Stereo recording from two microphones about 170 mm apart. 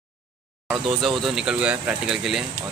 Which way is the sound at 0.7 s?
Centre (ahead or behind).